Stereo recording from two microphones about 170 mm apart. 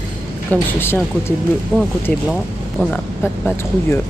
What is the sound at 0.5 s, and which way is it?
Speech, 15° left (ahead or behind).